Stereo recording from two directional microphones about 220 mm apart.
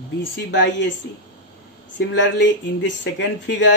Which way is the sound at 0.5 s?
50° left (ahead or behind).